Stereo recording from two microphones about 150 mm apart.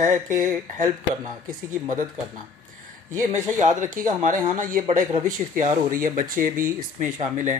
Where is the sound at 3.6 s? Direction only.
55° right (ahead or behind).